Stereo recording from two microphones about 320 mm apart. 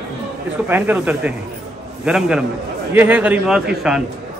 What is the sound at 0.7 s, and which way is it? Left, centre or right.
A man's voice, centre.